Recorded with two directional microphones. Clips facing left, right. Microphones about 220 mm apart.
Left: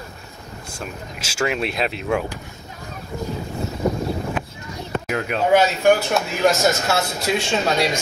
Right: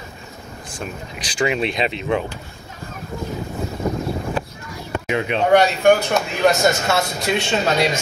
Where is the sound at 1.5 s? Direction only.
5° left (ahead or behind).